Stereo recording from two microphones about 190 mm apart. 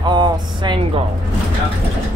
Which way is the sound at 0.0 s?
25° right (ahead or behind).